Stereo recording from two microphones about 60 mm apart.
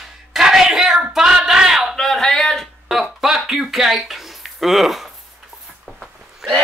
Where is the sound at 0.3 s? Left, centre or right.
Centre.